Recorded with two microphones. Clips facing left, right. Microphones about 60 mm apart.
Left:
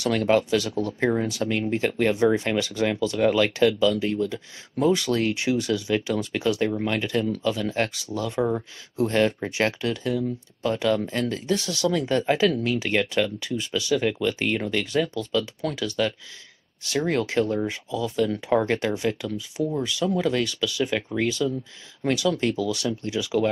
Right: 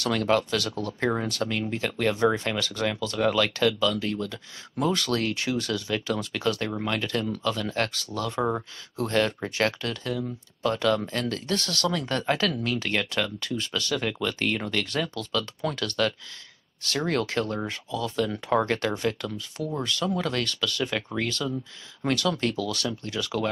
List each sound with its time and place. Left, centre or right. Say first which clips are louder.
0.0 s speech: left 3 dB; centre